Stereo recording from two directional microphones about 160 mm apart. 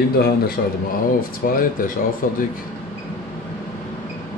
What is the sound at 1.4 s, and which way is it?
Speech, 65° left (ahead or behind).